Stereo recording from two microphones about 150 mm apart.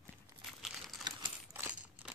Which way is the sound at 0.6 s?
Centre (ahead or behind).